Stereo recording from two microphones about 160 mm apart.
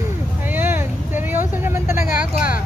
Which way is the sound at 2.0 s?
60° left (ahead or behind).